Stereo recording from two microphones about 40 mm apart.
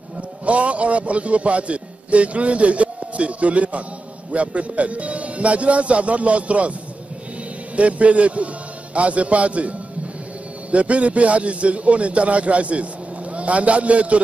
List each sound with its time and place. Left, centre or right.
0.5 s a man's voice: right
7.7 s a man's voice: right